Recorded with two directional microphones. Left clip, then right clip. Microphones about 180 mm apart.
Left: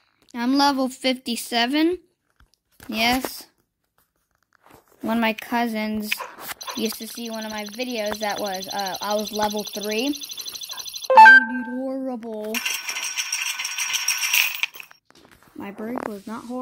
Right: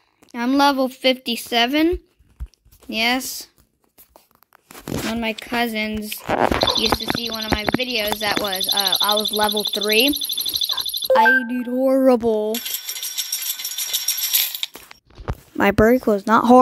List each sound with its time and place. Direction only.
0.3 s speech: 5° right (ahead or behind)
5.1 s speech: 25° left (ahead or behind)
5.5 s speech: 10° left (ahead or behind)
7.0 s speech: 30° left (ahead or behind)
8.5 s speech: 5° left (ahead or behind)
9.8 s speech: 15° right (ahead or behind)
10.5 s a sound: 30° left (ahead or behind)
11.2 s speech: 5° left (ahead or behind)
11.5 s speech: 25° right (ahead or behind)
11.9 s a sound: 45° right (ahead or behind)
12.4 s coin: 5° left (ahead or behind)
15.5 s speech: 70° right (ahead or behind)